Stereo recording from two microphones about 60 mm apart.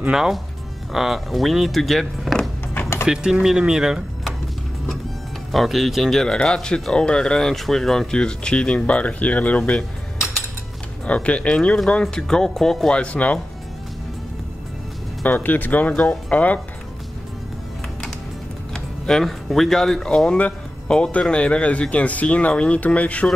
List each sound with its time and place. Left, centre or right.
0.1 s speech: centre
3.1 s speech: centre
5.5 s speech: centre; by 9.8 s left
11.1 s speech: left
13.0 s speech: left
15.2 s speech: left
15.9 s speech: centre
18.7 s speech: centre; by 23.2 s left